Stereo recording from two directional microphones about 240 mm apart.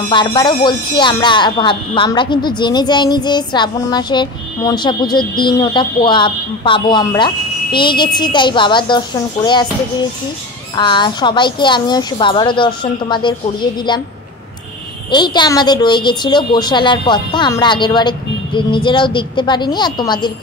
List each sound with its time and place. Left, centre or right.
0.1 s speech: centre
10.8 s speech: centre
15.0 s speech: centre